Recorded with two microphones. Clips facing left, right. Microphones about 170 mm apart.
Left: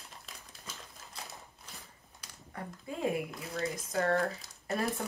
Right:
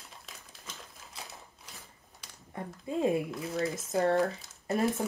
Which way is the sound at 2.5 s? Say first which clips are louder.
Right 3 dB; 20° right (ahead or behind).